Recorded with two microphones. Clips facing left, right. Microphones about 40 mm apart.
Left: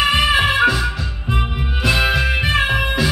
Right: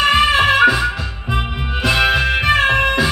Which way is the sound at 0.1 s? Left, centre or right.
Centre.